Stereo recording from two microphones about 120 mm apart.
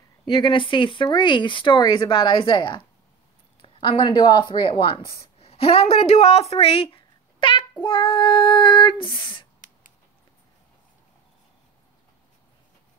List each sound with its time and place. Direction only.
0.3 s a woman's voice: 40° left (ahead or behind); by 6.4 s 60° left (ahead or behind)
6.5 s a sound: 50° left (ahead or behind)
7.8 s female singing: 45° left (ahead or behind)